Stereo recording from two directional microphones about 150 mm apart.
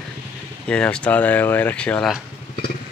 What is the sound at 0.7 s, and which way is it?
Speech, 5° left (ahead or behind).